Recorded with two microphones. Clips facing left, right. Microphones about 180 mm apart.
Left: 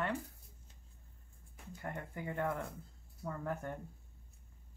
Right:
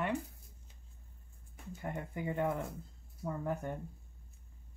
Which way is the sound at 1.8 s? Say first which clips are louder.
Right 3 dB; 15° right (ahead or behind).